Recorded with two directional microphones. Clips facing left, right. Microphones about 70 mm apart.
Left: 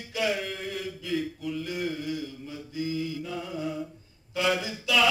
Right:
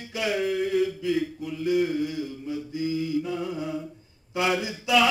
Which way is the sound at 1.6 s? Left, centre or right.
Right.